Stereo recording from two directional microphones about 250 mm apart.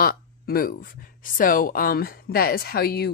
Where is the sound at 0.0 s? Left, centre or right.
Left.